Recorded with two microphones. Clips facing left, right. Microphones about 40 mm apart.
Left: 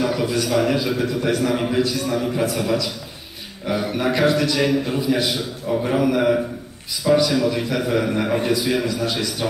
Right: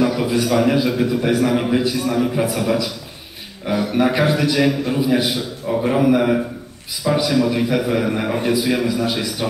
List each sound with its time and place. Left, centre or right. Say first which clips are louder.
0.2 s a man's voice: right 3 dB; centre
3.9 s a man's voice: right 2 dB; centre